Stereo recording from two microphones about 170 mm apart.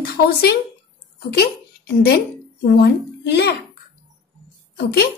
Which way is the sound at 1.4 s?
70° left (ahead or behind).